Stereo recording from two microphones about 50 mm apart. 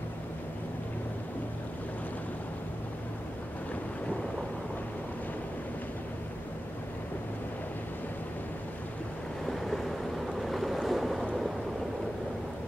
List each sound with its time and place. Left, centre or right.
9.5 s waves: centre